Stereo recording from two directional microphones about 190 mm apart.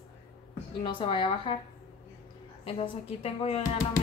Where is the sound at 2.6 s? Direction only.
30° left (ahead or behind).